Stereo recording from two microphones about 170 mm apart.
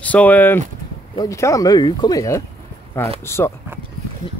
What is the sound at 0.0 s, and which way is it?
Speech, 10° left (ahead or behind).